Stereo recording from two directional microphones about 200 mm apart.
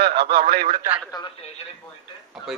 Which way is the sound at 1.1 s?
20° left (ahead or behind).